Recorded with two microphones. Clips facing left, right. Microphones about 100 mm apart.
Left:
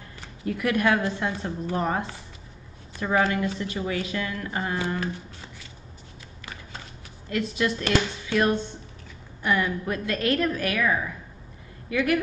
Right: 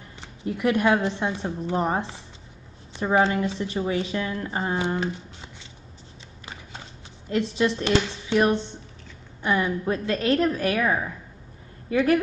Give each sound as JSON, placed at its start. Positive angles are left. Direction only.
{"t": 0.2, "sound": "a woman's voice", "side_deg": -25}
{"t": 7.2, "sound": "a woman's voice", "side_deg": -25}